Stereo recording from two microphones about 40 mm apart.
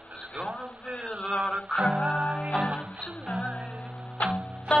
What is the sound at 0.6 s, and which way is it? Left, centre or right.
Music, centre.